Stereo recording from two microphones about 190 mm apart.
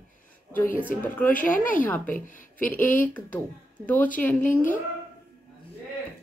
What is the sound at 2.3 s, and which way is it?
Speech, 45° left (ahead or behind).